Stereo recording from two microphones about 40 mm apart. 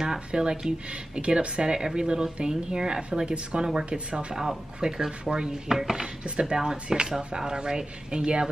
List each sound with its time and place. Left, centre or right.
0.0 s speech: centre
4.1 s speech: right
4.7 s speech: centre
5.7 s speech: centre